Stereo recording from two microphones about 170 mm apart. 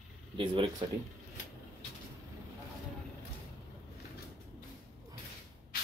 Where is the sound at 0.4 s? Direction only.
30° right (ahead or behind).